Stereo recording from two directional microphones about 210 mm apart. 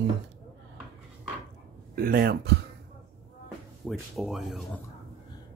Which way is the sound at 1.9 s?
45° right (ahead or behind).